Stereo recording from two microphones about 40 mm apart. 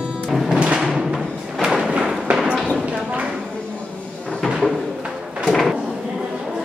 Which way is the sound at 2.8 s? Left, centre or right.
Right.